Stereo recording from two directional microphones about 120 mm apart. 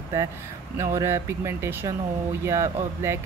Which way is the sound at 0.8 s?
25° right (ahead or behind).